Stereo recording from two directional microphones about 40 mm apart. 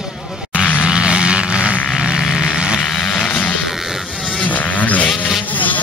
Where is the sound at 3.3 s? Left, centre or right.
Left.